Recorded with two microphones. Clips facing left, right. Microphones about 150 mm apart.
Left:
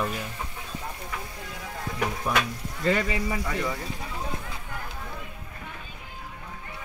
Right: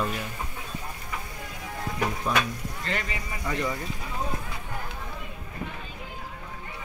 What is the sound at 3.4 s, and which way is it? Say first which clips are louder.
Speech: right 1 dB; 5° left (ahead or behind).